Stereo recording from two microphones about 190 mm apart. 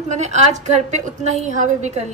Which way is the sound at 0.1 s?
40° right (ahead or behind).